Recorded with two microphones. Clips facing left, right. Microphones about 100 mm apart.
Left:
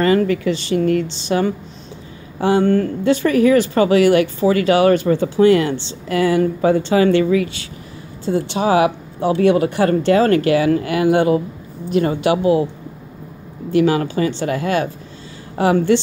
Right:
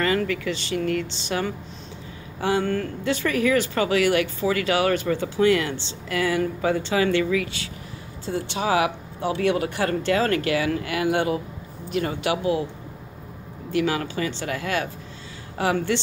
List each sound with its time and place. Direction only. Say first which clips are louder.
0.0 s speech: left 8 dB; 35° left (ahead or behind)
13.7 s speech: left 8 dB; 35° left (ahead or behind)